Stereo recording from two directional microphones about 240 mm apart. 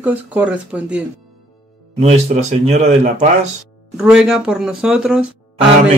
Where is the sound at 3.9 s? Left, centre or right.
Centre.